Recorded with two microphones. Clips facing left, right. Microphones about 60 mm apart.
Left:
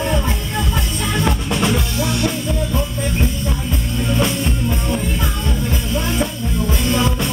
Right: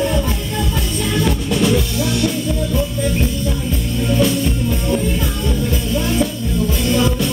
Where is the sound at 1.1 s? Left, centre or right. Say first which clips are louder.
Right 2 dB; left.